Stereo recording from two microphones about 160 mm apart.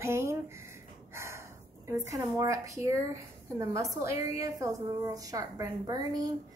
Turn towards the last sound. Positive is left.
turn(degrees=-25)  # may be behind; listen again after turning